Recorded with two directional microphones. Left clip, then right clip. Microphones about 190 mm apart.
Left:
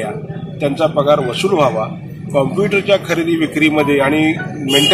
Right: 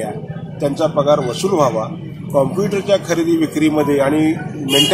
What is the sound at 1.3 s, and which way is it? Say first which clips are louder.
Speech: left 2 dB; 20° right (ahead or behind).